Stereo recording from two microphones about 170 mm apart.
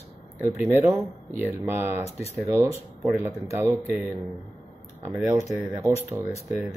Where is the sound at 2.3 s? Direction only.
15° right (ahead or behind).